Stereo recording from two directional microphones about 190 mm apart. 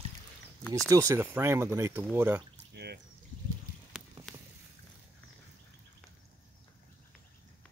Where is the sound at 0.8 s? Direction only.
15° right (ahead or behind).